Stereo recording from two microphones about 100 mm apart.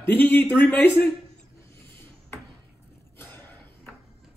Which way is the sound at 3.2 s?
20° left (ahead or behind).